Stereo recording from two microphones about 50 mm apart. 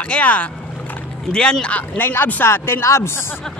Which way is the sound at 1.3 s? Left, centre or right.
Centre.